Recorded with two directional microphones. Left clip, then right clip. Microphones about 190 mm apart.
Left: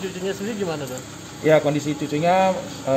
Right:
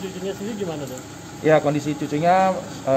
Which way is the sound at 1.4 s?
5° right (ahead or behind).